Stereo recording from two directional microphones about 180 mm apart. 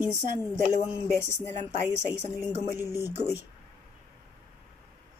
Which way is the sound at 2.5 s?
15° right (ahead or behind).